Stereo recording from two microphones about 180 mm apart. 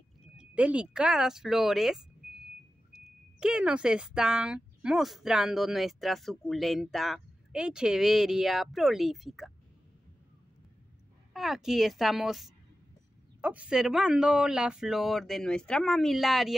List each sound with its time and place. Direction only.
0.4 s speech: 5° right (ahead or behind)
11.3 s speech: centre (ahead or behind)